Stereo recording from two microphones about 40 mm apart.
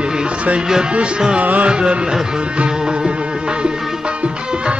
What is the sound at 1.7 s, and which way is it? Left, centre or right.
Music, right.